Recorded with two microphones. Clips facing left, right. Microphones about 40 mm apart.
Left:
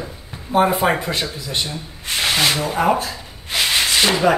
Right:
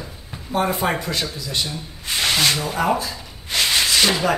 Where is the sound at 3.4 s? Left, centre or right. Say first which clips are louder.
Left 1 dB; centre.